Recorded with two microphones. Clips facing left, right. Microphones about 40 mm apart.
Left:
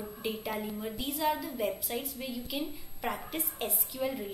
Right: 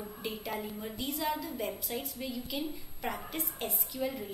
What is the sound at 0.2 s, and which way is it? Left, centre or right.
A woman's voice, centre.